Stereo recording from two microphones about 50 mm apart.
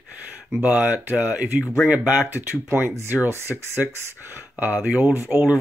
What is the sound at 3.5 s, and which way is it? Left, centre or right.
Speech, centre.